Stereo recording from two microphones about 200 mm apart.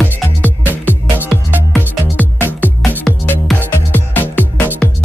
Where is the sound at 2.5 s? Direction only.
10° left (ahead or behind).